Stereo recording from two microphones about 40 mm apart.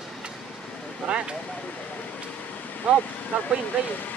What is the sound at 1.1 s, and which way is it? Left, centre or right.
Vehicle, right.